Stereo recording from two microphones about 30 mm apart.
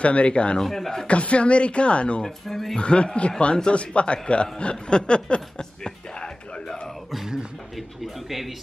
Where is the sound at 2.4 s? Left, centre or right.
Centre.